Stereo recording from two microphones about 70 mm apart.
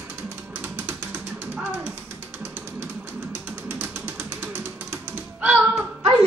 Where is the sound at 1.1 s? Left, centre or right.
Centre; by 4.1 s right.